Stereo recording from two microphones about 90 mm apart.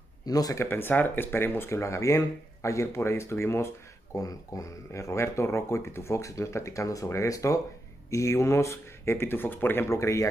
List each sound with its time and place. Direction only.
0.2 s speech: 45° left (ahead or behind)
0.7 s speech: 25° left (ahead or behind)